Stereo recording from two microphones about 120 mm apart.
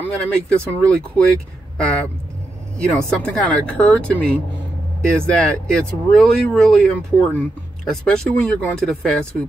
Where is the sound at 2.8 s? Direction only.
10° left (ahead or behind).